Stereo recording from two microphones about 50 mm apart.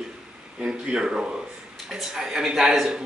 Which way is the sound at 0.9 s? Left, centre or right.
Centre.